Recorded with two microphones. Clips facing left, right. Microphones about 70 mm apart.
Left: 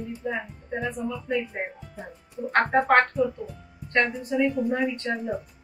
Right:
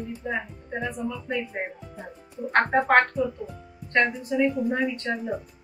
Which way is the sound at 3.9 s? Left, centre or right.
Centre.